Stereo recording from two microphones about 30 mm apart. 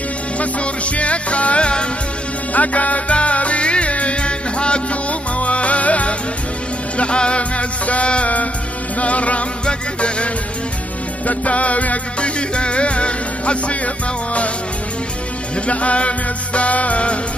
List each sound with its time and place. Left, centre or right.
0.4 s music: left
2.5 s music: left
5.4 s music: left
7.0 s music: left
9.7 s music: left
12.2 s music: left
15.6 s music: left